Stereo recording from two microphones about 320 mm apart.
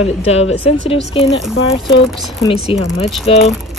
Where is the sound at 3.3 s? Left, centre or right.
Centre.